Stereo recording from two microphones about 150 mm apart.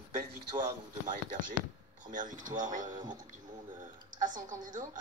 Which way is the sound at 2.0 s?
60° right (ahead or behind).